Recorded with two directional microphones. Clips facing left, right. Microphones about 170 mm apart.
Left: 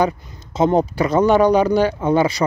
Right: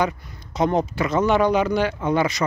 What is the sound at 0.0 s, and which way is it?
Speech, 25° left (ahead or behind).